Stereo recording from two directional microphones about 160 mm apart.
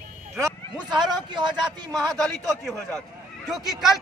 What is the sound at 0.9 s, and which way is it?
Speech, 30° right (ahead or behind).